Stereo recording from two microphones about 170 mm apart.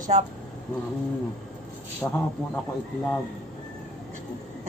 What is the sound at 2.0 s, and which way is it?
Speech, 15° left (ahead or behind).